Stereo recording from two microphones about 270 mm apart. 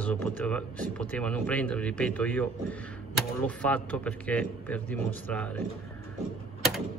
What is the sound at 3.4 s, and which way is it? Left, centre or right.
Speech, centre.